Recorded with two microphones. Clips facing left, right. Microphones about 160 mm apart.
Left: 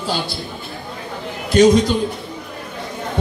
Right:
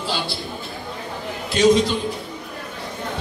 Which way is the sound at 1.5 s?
45° left (ahead or behind).